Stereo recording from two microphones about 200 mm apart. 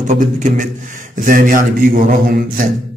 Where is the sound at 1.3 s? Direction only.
45° right (ahead or behind).